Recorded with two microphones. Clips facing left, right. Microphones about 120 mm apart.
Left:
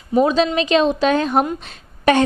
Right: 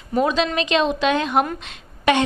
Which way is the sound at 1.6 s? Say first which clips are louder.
Left 3 dB; 40° left (ahead or behind).